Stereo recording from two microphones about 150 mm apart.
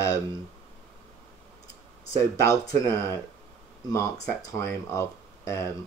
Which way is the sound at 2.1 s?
20° left (ahead or behind).